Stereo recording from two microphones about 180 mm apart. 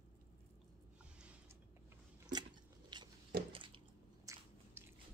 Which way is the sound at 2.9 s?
25° right (ahead or behind).